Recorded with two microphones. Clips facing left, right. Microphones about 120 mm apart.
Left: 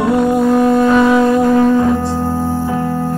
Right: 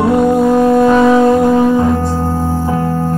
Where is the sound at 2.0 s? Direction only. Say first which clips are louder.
Right 1 dB; 40° right (ahead or behind).